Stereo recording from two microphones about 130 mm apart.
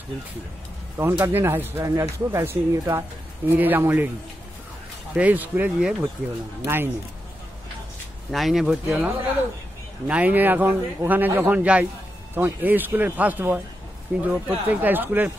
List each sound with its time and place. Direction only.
0.9 s speech: 15° right (ahead or behind)
5.1 s speech: 10° right (ahead or behind)
8.3 s speech: centre (ahead or behind)